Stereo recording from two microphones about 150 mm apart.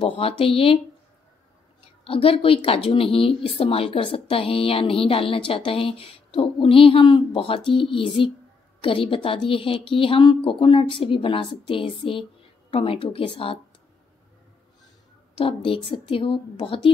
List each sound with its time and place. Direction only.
0.0 s speech: 40° left (ahead or behind)
2.0 s speech: 40° left (ahead or behind)
15.3 s speech: 35° left (ahead or behind)